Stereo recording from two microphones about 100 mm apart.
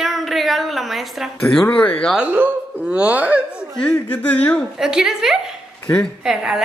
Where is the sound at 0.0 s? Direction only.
Centre (ahead or behind).